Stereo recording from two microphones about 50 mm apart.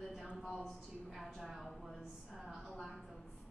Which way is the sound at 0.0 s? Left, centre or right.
Centre.